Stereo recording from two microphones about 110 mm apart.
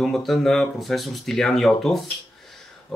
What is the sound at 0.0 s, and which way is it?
Speech, centre (ahead or behind).